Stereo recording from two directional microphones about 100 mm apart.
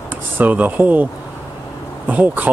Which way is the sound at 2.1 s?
15° right (ahead or behind).